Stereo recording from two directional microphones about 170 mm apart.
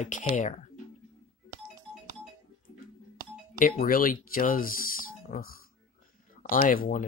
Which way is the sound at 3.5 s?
50° left (ahead or behind).